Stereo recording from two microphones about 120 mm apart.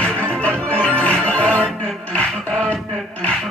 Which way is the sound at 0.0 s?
10° left (ahead or behind).